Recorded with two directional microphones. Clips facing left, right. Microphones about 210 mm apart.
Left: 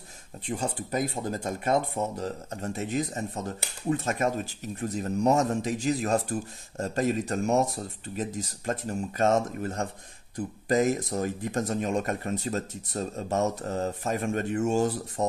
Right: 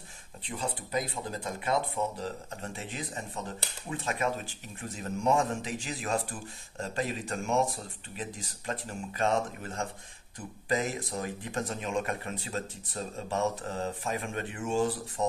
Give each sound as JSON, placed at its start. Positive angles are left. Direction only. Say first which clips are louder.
{"t": 0.5, "sound": "speech", "louder": "left 4 dB", "side_deg": 45}